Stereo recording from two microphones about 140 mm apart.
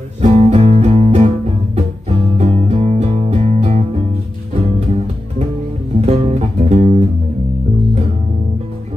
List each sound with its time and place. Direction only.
0.2 s music: 50° right (ahead or behind)
5.9 s music: 50° right (ahead or behind)